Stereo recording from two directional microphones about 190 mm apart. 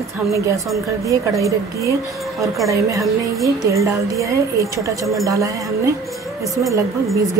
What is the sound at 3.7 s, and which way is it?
A woman's voice, 15° right (ahead or behind).